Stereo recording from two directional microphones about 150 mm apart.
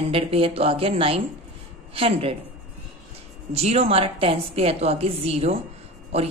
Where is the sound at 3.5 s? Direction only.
45° right (ahead or behind).